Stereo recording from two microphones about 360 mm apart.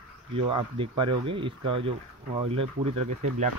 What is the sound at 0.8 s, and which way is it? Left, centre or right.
Speech, centre.